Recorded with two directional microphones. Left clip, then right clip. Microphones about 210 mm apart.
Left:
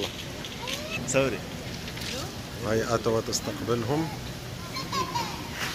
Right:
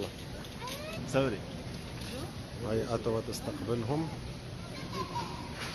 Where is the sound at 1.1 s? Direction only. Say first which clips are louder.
Left 5 dB; 45° right (ahead or behind).